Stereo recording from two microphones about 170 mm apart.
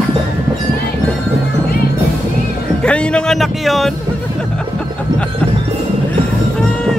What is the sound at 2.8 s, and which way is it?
Speech, 5° left (ahead or behind).